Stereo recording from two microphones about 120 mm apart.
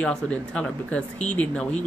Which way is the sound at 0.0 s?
10° left (ahead or behind).